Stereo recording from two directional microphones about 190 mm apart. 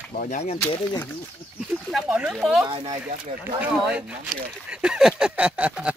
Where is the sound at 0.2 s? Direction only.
40° left (ahead or behind).